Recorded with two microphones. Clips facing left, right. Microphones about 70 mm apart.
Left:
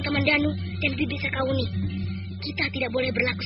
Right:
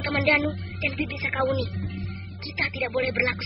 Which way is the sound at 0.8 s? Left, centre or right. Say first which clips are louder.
Left 2 dB; centre.